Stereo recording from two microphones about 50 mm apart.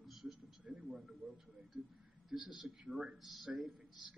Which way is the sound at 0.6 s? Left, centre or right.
Right.